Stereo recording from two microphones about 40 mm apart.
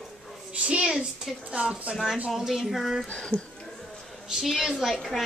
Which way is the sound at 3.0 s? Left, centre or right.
Left.